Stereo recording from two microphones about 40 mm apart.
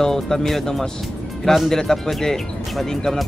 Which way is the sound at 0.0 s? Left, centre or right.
Centre.